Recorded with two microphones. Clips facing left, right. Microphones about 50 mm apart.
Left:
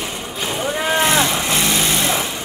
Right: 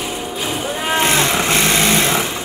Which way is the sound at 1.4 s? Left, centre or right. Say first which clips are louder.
Right 3 dB; right.